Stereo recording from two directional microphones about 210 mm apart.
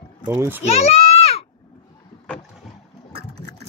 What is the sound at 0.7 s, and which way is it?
Speech, 30° left (ahead or behind).